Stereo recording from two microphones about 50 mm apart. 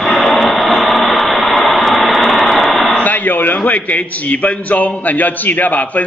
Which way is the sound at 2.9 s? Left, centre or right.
Left.